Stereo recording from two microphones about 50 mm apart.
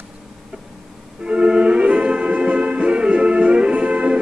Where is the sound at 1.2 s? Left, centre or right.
Centre.